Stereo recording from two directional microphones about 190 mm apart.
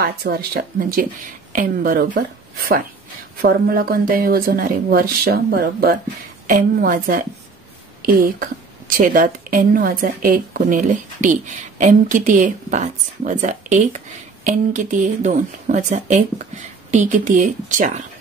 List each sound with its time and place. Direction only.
0.0 s speech: 55° right (ahead or behind)
3.4 s a woman's voice: 50° right (ahead or behind)